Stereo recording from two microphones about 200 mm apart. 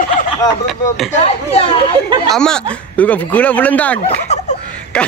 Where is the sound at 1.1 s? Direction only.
30° left (ahead or behind).